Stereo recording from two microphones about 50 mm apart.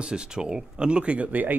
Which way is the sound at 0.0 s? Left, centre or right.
Centre.